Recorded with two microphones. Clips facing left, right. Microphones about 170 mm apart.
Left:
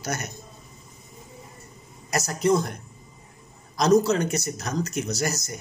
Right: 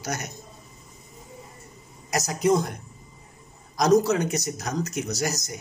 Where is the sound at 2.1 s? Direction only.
15° right (ahead or behind).